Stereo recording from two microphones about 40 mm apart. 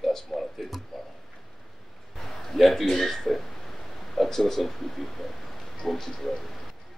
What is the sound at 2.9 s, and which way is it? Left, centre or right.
Speech, centre.